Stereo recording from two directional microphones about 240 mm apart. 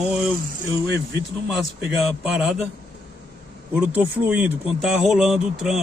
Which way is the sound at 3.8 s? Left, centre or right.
Centre.